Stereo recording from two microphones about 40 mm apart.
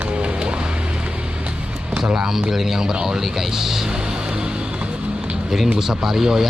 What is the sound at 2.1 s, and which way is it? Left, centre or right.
Speech, centre.